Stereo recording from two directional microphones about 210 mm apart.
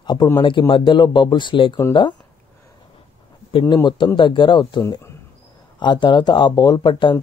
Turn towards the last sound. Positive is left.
turn(degrees=20)  # may be behind; listen again after turning